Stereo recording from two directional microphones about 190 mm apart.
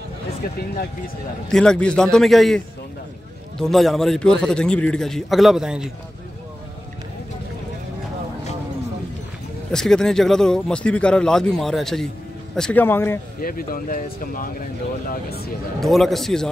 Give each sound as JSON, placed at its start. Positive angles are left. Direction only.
{"t": 1.5, "sound": "speech", "side_deg": 5}
{"t": 9.7, "sound": "speech", "side_deg": 5}
{"t": 13.4, "sound": "speech", "side_deg": 50}
{"t": 15.8, "sound": "speech", "side_deg": 0}